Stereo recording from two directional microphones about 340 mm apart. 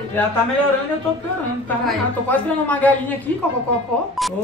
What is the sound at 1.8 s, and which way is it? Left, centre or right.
A woman's voice, centre.